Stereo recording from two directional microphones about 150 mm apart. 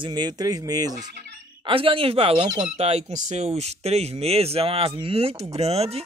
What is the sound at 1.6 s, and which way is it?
Speech, 35° right (ahead or behind).